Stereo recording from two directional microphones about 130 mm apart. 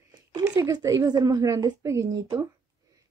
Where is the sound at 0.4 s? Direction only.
30° right (ahead or behind).